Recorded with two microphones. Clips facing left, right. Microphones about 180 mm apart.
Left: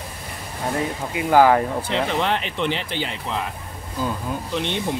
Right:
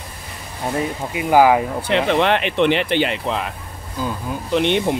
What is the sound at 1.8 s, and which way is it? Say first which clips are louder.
Speech: right 5 dB; 70° right (ahead or behind).